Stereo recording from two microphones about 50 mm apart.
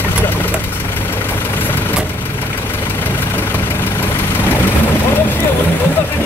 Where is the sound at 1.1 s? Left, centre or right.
Left.